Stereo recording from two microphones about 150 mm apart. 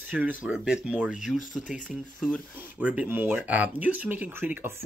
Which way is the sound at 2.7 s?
10° right (ahead or behind).